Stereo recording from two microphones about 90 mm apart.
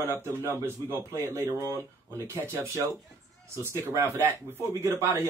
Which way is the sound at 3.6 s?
30° right (ahead or behind).